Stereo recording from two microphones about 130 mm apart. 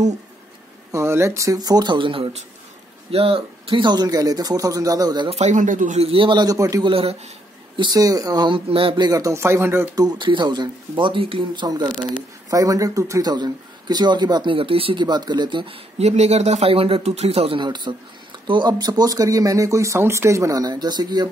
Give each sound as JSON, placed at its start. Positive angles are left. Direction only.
{"t": 0.9, "sound": "speech", "side_deg": -20}
{"t": 5.3, "sound": "speech", "side_deg": -65}
{"t": 5.9, "sound": "speech", "side_deg": -45}
{"t": 6.8, "sound": "speech", "side_deg": -45}
{"t": 7.7, "sound": "speech", "side_deg": -35}
{"t": 10.0, "sound": "speech", "side_deg": -35}